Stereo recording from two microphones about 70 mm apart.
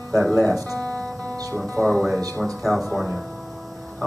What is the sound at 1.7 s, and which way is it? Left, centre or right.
Speech, centre.